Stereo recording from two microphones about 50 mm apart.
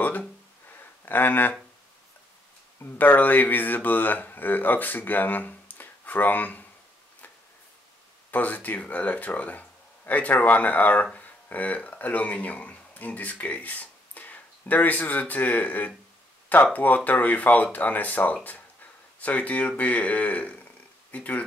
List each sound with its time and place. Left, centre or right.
0.7 s a sound: left
2.8 s speech: left
8.3 s a man's voice: left